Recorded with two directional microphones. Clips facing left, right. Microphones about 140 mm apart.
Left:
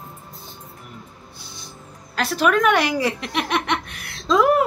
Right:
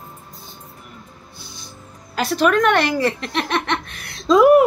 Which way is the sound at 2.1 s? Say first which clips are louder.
Right 2 dB; 5° left (ahead or behind).